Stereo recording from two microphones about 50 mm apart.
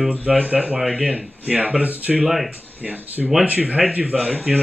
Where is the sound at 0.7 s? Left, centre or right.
Centre.